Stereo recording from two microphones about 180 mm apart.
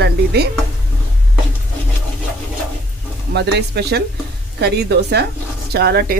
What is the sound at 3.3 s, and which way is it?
Speech, 65° right (ahead or behind).